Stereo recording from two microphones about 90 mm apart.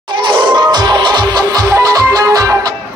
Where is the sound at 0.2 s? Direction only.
65° right (ahead or behind); by 2.7 s 40° right (ahead or behind).